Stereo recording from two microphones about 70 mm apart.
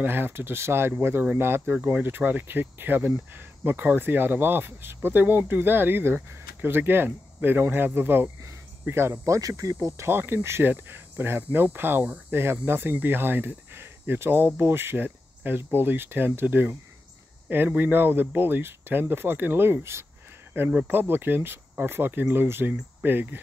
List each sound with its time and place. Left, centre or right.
0.0 s speech: right
9.3 s speech: right